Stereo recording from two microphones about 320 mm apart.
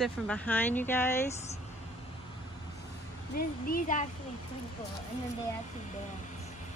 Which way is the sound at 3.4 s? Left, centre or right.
Left.